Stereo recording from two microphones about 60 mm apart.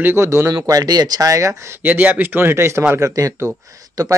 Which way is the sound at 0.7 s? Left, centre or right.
Right.